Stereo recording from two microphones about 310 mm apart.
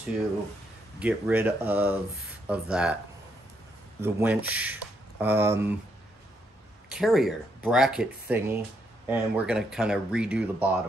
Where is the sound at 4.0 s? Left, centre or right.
Centre.